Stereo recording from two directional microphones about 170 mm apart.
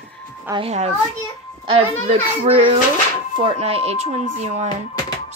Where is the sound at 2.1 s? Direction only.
35° right (ahead or behind).